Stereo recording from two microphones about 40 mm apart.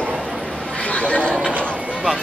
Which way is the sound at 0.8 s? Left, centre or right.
Left.